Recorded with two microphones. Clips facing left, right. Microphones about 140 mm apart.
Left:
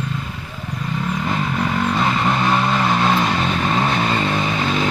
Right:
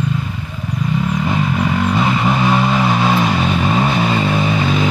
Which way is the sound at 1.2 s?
5° right (ahead or behind).